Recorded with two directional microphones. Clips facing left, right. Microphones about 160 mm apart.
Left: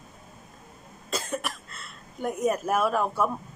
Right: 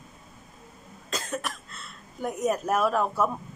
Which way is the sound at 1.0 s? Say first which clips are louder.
Left 1 dB; 5° left (ahead or behind).